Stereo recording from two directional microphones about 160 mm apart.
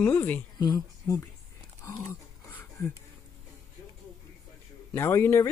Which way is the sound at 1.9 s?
20° left (ahead or behind).